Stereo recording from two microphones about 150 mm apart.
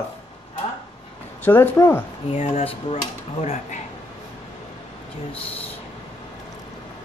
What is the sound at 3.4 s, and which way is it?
Speech, 50° left (ahead or behind).